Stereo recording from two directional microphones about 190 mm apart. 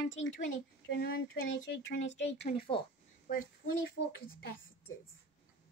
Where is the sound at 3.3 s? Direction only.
50° left (ahead or behind).